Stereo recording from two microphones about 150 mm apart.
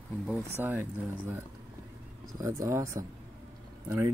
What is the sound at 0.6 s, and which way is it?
Speech, 15° right (ahead or behind).